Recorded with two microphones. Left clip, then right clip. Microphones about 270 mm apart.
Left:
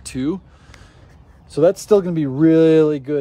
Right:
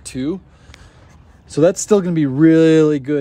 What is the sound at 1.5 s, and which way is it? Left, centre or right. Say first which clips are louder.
Speech: even; right.